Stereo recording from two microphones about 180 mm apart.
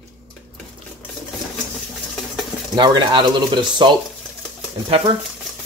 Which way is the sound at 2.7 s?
25° right (ahead or behind).